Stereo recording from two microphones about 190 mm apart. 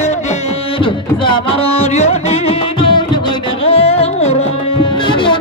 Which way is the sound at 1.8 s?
35° left (ahead or behind).